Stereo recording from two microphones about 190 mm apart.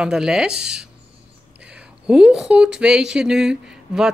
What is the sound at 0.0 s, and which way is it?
Speech, 5° right (ahead or behind).